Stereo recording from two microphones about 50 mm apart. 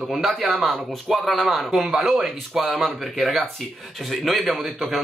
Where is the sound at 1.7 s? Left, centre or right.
Centre.